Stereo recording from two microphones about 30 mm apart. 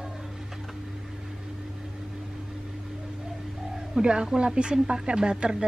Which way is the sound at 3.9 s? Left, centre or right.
Right.